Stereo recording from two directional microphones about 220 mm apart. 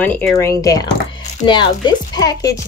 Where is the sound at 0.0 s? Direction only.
5° left (ahead or behind).